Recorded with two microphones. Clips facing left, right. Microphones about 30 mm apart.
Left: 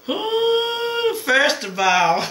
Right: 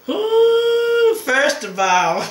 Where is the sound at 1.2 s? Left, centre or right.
Left.